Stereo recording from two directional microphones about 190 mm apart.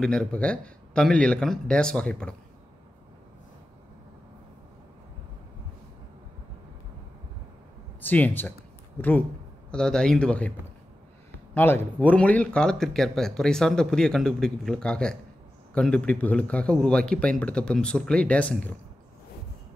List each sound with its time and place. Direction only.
0.0 s speech: 5° left (ahead or behind)
8.1 s speech: 10° left (ahead or behind)
11.5 s speech: 10° left (ahead or behind)